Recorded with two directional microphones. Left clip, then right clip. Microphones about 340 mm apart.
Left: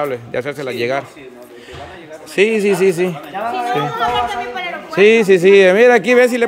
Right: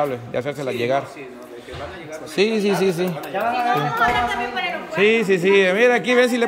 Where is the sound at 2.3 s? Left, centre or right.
Centre.